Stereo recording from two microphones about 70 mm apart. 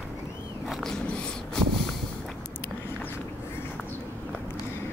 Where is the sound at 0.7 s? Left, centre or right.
Centre.